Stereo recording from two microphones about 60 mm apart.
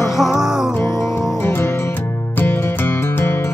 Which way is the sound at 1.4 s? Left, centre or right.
Left.